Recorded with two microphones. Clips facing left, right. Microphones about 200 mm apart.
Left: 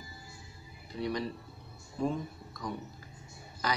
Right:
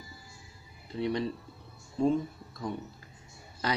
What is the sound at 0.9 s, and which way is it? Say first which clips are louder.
Speech: right 3 dB; 25° right (ahead or behind).